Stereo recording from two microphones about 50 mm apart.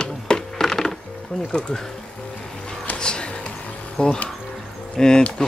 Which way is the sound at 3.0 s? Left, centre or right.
Centre.